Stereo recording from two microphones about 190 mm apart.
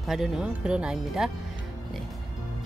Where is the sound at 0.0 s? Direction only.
Centre (ahead or behind).